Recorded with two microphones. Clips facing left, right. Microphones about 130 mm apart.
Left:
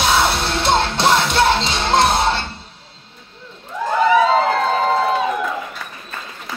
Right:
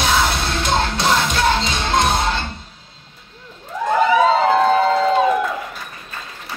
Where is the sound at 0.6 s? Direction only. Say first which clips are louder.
Left 3 dB; 30° left (ahead or behind).